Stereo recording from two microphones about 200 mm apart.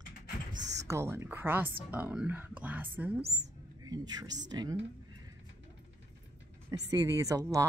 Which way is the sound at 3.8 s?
20° right (ahead or behind).